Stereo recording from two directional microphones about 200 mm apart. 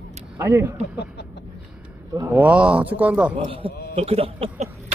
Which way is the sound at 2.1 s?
15° right (ahead or behind).